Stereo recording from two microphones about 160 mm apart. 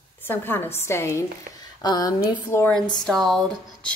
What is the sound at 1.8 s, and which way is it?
Speech, 25° left (ahead or behind).